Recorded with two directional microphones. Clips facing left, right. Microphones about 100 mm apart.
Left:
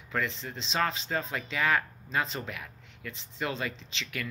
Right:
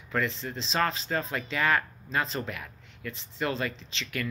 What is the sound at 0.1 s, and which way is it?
Speech, 35° right (ahead or behind).